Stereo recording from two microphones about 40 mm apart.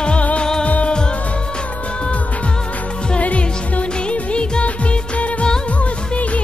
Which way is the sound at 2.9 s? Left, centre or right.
Left.